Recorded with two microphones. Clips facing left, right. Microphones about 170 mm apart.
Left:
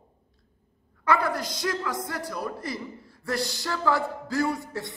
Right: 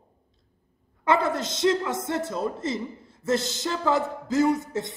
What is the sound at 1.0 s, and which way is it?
A woman's voice, 25° right (ahead or behind).